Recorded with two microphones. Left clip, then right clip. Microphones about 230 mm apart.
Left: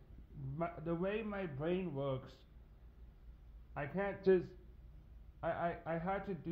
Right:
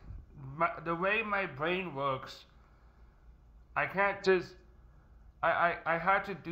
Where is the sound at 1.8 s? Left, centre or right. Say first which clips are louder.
Right 7 dB; right.